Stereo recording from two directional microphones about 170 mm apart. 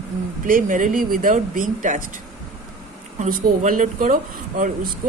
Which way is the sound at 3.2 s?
50° right (ahead or behind).